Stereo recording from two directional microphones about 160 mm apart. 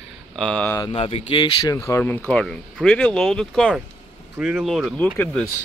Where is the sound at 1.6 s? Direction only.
20° left (ahead or behind).